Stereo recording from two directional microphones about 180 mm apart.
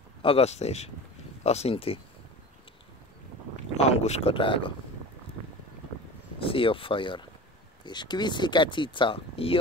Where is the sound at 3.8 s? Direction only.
35° left (ahead or behind).